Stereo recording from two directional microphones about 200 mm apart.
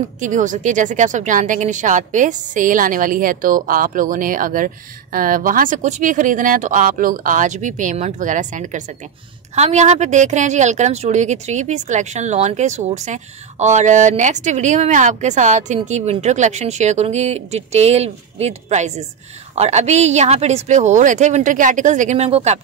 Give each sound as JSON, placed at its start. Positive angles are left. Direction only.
{"t": 0.2, "sound": "a woman's voice", "side_deg": -40}